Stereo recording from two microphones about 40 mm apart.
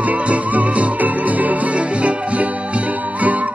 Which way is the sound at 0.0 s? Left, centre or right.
Right.